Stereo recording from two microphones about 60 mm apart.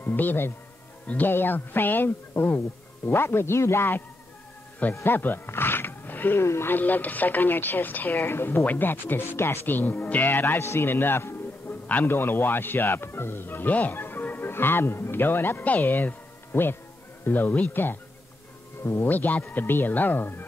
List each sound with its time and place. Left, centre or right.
0.1 s a man's voice: left
5.0 s speech: left
6.4 s a man's voice: left
6.7 s a man's voice: left
18.8 s speech: left
19.0 s speech: left